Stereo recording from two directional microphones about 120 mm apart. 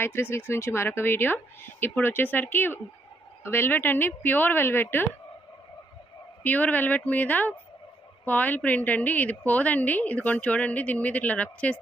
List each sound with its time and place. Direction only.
0.0 s a woman's voice: 20° left (ahead or behind)
6.4 s a woman's voice: 15° left (ahead or behind)